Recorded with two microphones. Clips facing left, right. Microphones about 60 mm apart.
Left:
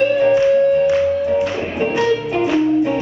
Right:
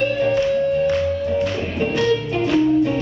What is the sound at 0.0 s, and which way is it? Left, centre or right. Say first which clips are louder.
Music: left 5 dB; centre.